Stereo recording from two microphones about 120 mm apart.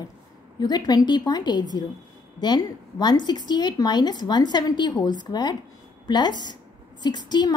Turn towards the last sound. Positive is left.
turn(degrees=35)  # may be behind; listen again after turning